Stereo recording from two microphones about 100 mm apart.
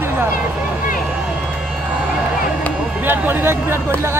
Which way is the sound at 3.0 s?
20° right (ahead or behind).